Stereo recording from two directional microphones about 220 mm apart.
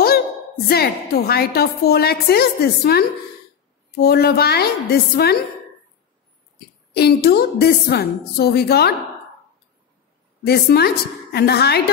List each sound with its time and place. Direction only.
0.7 s a woman's voice: 45° left (ahead or behind)
7.0 s a woman's voice: 45° left (ahead or behind)
10.4 s a woman's voice: 45° left (ahead or behind)